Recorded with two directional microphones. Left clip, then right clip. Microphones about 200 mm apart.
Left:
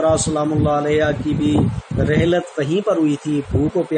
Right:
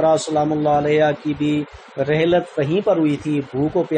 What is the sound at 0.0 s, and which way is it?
Speech, 15° left (ahead or behind).